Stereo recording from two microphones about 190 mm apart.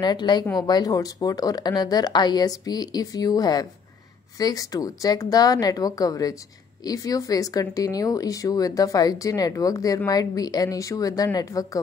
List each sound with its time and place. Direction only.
0.0 s speech: 20° left (ahead or behind)